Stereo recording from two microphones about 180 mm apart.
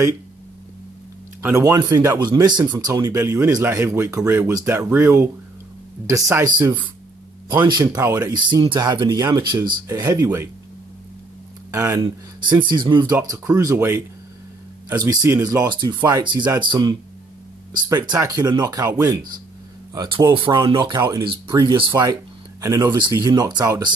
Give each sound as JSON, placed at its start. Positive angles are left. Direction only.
{"t": 1.4, "sound": "speech", "side_deg": -15}
{"t": 11.7, "sound": "speech", "side_deg": -15}